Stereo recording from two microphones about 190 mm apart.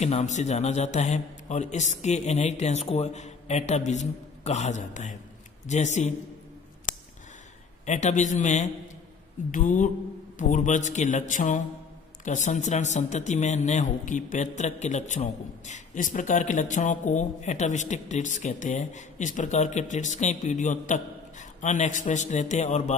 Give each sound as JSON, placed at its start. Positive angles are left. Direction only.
{"t": 0.0, "sound": "speech", "side_deg": 35}
{"t": 7.8, "sound": "speech", "side_deg": 40}